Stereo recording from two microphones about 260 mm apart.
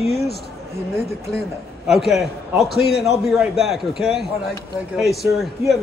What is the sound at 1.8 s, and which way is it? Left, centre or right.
Speech, centre.